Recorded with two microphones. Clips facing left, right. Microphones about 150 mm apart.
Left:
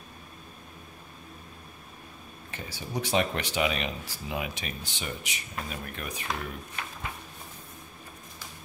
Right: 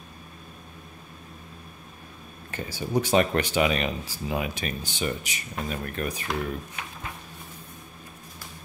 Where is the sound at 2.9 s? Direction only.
50° right (ahead or behind).